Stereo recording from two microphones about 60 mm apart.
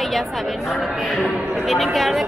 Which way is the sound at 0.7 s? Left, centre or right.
Centre.